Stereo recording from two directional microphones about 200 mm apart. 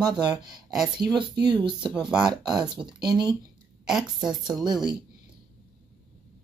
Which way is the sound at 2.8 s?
5° right (ahead or behind).